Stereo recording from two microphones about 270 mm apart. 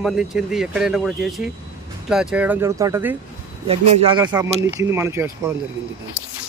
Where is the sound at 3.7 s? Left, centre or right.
Right.